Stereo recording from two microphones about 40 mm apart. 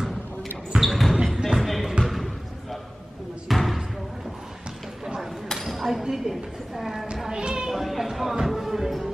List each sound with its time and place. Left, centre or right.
0.8 s basketball bounce: centre
1.3 s music: centre
2.0 s basketball bounce: centre
5.5 s a sound: centre
7.2 s cat: centre
7.7 s a sound: centre
8.5 s music: centre